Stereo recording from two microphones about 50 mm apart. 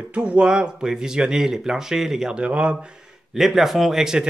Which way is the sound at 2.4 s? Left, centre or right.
Right.